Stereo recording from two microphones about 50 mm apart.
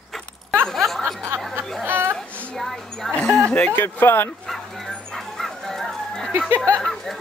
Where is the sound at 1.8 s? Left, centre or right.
Right.